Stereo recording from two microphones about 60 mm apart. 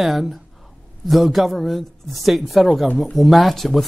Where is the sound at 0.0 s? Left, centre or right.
Centre.